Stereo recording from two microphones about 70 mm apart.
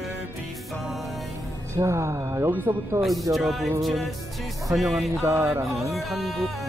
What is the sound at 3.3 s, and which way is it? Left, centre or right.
Music, centre.